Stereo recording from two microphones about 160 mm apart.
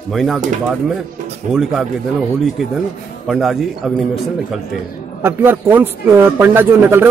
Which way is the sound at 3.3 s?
Centre (ahead or behind).